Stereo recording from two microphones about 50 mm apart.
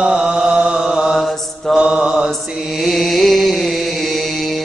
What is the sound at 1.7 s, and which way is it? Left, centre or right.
Mantra, centre.